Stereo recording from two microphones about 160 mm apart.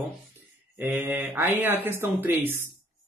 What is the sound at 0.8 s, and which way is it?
Speech, 15° right (ahead or behind).